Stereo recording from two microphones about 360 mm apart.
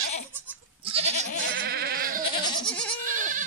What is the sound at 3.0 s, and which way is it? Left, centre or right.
Goat, right.